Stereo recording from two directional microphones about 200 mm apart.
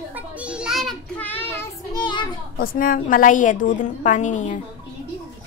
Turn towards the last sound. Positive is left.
turn(degrees=40)  # may be behind; listen again after turning